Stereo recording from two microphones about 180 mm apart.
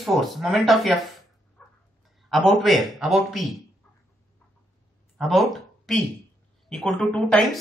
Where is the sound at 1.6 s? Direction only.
5° left (ahead or behind).